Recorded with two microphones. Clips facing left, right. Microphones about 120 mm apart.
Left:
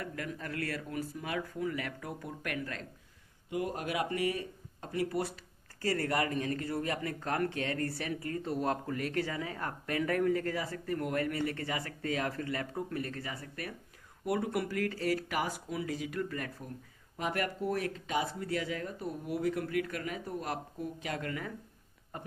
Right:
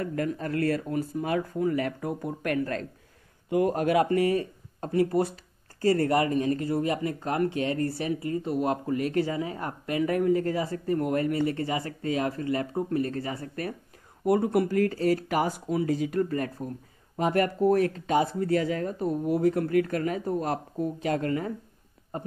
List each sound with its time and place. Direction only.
0.0 s speech: 40° right (ahead or behind)
3.4 s speech: 55° right (ahead or behind)
5.2 s speech: 30° right (ahead or behind)